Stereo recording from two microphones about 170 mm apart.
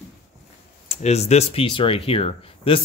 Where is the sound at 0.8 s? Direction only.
40° left (ahead or behind).